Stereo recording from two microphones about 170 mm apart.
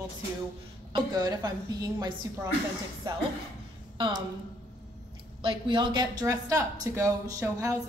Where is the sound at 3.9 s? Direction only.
25° right (ahead or behind).